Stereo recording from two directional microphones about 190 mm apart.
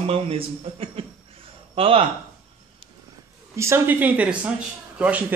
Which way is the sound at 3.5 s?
15° right (ahead or behind).